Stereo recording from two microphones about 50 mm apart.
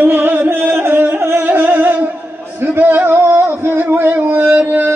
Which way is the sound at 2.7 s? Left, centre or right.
Right.